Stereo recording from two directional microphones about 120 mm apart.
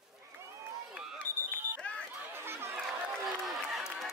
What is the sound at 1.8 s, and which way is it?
Chatter, 10° left (ahead or behind).